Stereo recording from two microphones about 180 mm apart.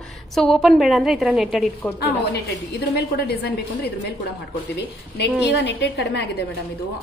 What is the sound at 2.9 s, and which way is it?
A woman's voice, 65° left (ahead or behind).